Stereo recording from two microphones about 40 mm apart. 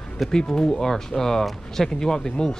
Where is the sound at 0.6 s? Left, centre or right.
Centre.